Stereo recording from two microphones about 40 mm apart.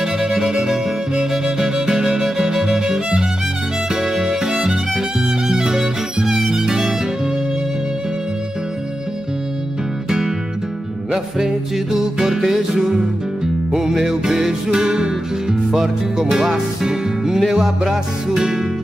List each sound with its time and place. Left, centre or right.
0.0 s music: centre
10.0 s music: centre